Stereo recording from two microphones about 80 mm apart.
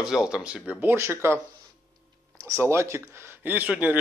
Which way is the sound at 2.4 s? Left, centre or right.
Right.